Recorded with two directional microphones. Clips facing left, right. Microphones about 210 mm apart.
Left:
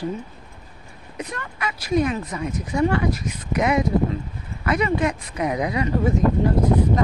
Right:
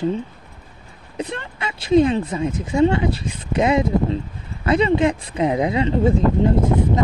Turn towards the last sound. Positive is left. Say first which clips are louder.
# right 1 dB
turn(degrees=-25)  # may be behind; listen again after turning